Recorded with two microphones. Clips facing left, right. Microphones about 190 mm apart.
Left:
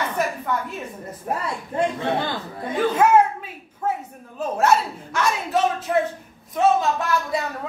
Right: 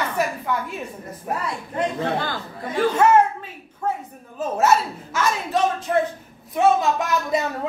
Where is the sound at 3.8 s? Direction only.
5° left (ahead or behind).